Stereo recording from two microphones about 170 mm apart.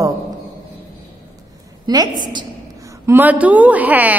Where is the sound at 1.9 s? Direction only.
25° right (ahead or behind).